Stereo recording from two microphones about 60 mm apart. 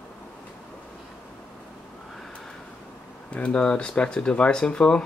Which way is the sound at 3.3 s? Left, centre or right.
Left.